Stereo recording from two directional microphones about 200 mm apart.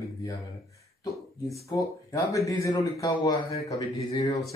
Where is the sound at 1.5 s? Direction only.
15° left (ahead or behind).